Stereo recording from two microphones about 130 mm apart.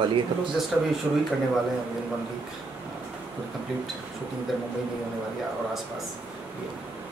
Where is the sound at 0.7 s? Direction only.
Centre (ahead or behind).